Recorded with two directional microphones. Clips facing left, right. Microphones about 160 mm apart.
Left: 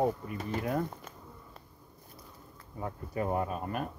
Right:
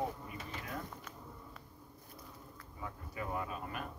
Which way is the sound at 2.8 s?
45° left (ahead or behind).